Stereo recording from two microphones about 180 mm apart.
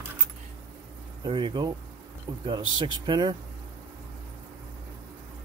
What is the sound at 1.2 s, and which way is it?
Speech, 25° right (ahead or behind).